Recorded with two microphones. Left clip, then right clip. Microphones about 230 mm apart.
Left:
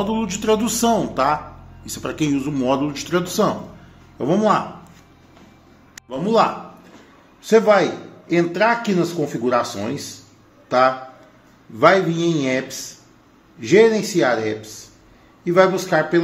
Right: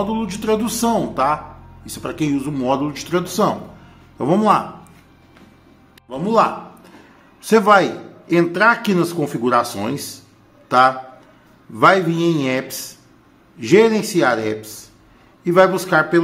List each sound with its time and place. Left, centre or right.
0.0 s speech: centre
4.2 s a man's voice: centre
6.0 s speech: centre
7.4 s a man's voice: centre